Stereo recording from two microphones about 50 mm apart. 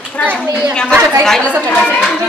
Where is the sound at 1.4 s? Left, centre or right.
Left.